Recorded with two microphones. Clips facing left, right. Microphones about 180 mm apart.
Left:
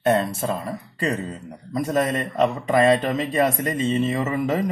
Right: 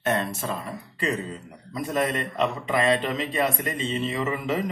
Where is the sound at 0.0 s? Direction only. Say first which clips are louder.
Left 6 dB; 35° left (ahead or behind).